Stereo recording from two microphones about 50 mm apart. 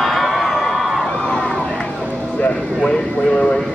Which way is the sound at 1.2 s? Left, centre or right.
Centre.